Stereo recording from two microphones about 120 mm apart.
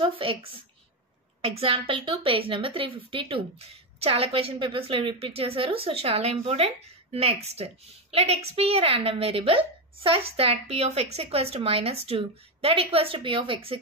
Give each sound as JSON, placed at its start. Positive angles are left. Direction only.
{"t": 0.0, "sound": "a woman's voice", "side_deg": -50}